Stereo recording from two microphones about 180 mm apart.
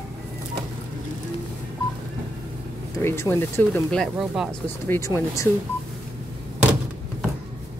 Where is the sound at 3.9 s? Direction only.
Centre (ahead or behind).